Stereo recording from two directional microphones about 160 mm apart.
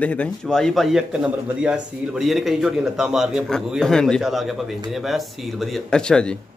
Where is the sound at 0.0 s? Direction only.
10° left (ahead or behind).